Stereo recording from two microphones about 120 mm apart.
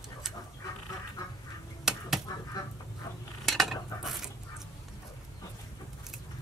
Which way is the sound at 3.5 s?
Centre (ahead or behind).